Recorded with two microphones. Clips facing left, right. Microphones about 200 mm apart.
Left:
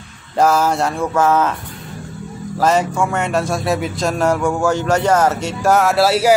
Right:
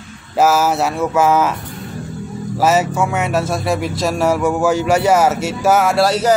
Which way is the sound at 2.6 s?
5° right (ahead or behind).